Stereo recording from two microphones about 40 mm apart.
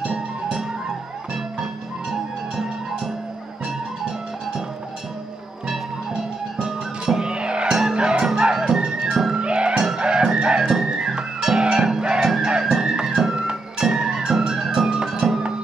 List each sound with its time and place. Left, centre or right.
1.3 s music: centre
5.7 s music: centre